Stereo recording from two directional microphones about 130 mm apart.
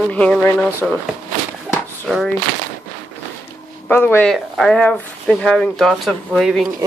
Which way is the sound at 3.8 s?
15° left (ahead or behind).